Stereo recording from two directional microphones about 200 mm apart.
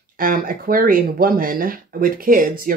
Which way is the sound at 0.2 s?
45° right (ahead or behind).